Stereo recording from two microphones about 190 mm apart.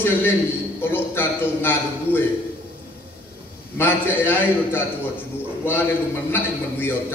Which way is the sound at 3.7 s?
10° left (ahead or behind).